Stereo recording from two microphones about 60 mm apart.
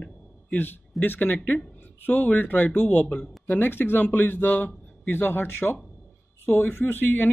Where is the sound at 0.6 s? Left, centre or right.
Left.